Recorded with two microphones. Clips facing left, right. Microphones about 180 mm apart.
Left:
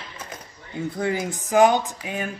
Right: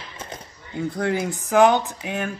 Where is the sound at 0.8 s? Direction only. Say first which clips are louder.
Right 2 dB; 5° left (ahead or behind).